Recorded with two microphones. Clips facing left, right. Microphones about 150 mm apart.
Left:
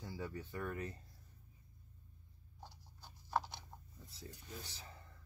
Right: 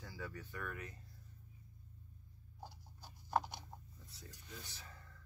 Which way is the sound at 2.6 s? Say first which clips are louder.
Right 3 dB; 10° right (ahead or behind).